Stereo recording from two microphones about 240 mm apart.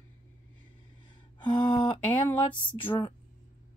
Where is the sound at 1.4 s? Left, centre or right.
Centre.